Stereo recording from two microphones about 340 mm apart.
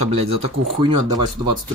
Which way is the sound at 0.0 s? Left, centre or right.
Centre.